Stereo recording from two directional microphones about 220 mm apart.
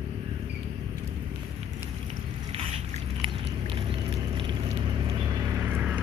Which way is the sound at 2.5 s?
25° right (ahead or behind).